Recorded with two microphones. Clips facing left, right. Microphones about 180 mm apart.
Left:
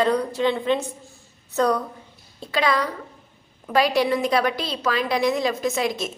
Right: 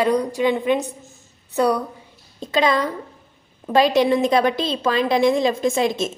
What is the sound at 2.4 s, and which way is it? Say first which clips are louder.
A woman's voice: right 3 dB; 20° right (ahead or behind).